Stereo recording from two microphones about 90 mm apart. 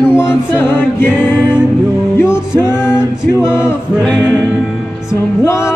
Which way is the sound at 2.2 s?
30° left (ahead or behind).